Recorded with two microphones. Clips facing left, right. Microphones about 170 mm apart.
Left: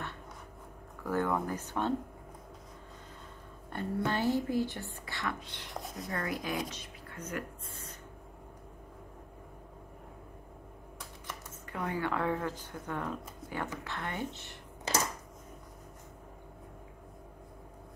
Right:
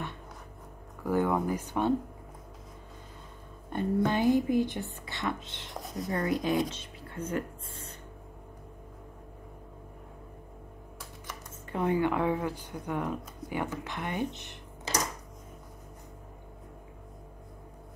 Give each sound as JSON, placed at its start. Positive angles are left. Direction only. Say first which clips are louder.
{"t": 1.0, "sound": "speech", "louder": "right 4 dB", "side_deg": -10}
{"t": 3.7, "sound": "speech", "louder": "right 5 dB", "side_deg": -15}
{"t": 5.7, "sound": "speech", "louder": "right 4 dB", "side_deg": 0}
{"t": 6.0, "sound": "speech", "louder": "right 8 dB", "side_deg": -20}
{"t": 11.7, "sound": "speech", "louder": "right 7 dB", "side_deg": -20}